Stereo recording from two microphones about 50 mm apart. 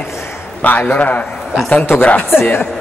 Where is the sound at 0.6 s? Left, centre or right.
Left.